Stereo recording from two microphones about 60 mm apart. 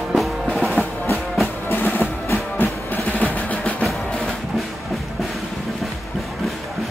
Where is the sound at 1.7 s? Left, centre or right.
Left.